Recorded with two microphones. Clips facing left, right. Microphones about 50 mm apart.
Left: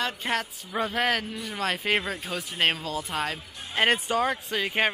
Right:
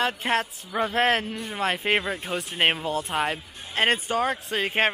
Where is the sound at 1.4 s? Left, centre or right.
Right.